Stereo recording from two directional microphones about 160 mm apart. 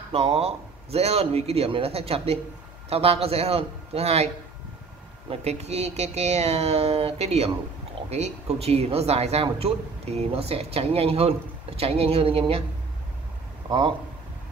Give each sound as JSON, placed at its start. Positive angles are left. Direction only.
{"t": 0.1, "sound": "speech", "side_deg": -40}
{"t": 5.3, "sound": "speech", "side_deg": -40}
{"t": 13.7, "sound": "a man's voice", "side_deg": -30}